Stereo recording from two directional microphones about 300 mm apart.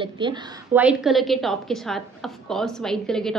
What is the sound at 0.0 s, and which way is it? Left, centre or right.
Speech, centre.